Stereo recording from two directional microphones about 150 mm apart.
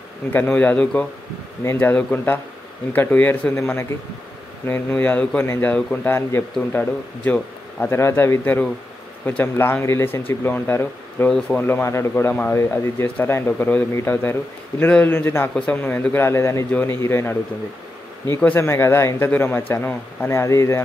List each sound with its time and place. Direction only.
0.3 s speech: 10° left (ahead or behind)